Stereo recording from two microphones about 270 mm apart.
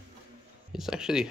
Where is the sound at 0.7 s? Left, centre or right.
Centre.